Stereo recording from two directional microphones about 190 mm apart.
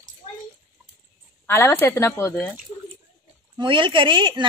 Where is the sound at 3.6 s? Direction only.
25° right (ahead or behind).